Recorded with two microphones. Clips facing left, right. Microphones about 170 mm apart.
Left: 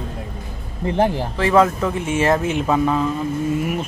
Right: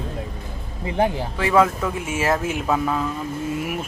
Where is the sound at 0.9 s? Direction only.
5° right (ahead or behind).